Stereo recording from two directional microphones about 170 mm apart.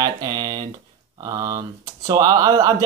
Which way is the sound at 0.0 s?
20° right (ahead or behind).